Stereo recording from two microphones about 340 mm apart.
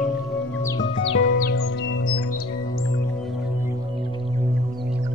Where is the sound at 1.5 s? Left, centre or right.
Left.